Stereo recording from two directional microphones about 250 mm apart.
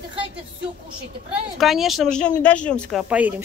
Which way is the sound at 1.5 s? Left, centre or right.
Centre.